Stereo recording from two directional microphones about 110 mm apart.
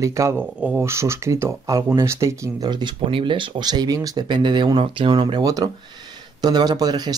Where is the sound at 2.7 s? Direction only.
50° right (ahead or behind).